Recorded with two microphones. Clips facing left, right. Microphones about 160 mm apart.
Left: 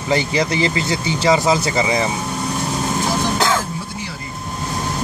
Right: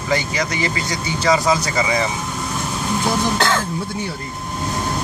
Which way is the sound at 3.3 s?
5° left (ahead or behind).